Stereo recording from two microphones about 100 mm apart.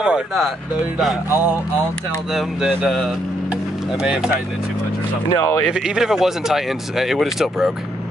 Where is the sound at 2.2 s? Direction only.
5° right (ahead or behind).